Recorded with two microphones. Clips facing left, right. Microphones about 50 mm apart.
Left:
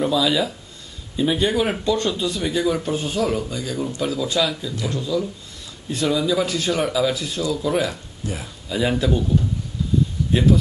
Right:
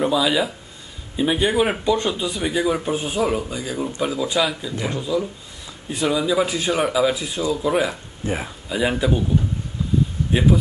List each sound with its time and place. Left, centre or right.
0.0 s speech: centre
8.2 s speech: right
8.6 s speech: centre